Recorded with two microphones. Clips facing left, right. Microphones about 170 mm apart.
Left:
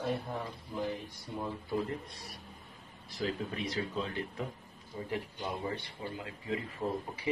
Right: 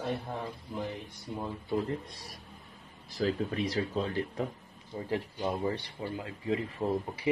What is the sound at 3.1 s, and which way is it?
Speech, 40° right (ahead or behind).